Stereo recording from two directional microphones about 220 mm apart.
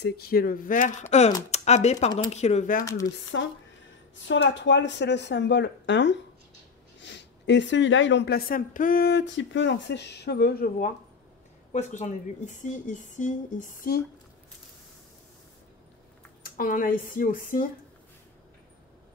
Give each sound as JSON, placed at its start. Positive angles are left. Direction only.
{"t": 0.0, "sound": "speech", "side_deg": 45}
{"t": 2.8, "sound": "speech", "side_deg": 15}
{"t": 3.3, "sound": "speech", "side_deg": 60}
{"t": 11.7, "sound": "speech", "side_deg": 30}
{"t": 16.4, "sound": "speech", "side_deg": 40}